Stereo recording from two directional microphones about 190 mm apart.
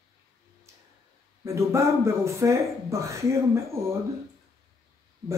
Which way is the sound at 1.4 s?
15° right (ahead or behind).